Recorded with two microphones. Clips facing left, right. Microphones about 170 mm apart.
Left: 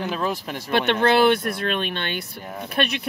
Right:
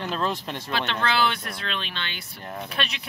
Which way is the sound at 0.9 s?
55° left (ahead or behind).